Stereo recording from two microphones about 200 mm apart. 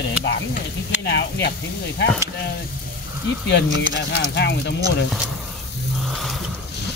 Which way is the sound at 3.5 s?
60° left (ahead or behind).